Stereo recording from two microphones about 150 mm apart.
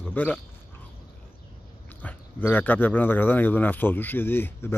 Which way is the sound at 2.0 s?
10° left (ahead or behind).